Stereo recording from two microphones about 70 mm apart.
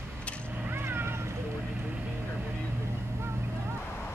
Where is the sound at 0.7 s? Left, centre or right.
Right.